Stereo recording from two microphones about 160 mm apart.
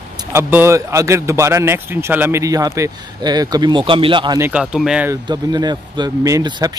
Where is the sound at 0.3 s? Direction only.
15° right (ahead or behind); by 4.4 s 30° right (ahead or behind).